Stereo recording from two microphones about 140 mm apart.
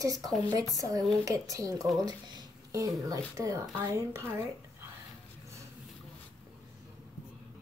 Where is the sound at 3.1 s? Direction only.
25° right (ahead or behind).